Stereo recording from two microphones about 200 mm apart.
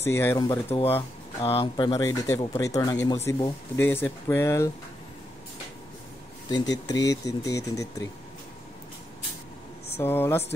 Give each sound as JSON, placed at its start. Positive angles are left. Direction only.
{"t": 0.0, "sound": "speech", "side_deg": 10}
{"t": 0.9, "sound": "speech", "side_deg": 30}
{"t": 3.7, "sound": "speech", "side_deg": 10}
{"t": 6.5, "sound": "speech", "side_deg": 20}
{"t": 9.9, "sound": "speech", "side_deg": 10}